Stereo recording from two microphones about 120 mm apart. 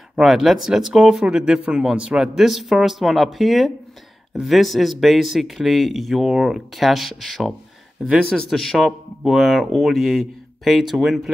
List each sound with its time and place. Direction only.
0.1 s speech: centre (ahead or behind)